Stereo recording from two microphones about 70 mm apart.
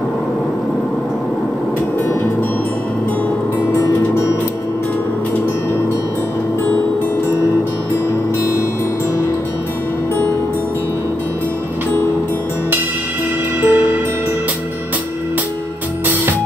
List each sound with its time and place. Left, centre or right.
13.6 s music: right